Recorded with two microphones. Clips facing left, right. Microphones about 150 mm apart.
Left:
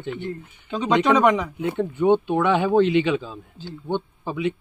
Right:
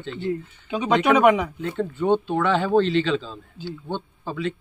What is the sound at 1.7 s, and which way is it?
Speech, 15° left (ahead or behind).